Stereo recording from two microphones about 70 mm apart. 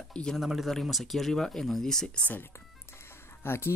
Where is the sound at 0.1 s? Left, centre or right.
Centre.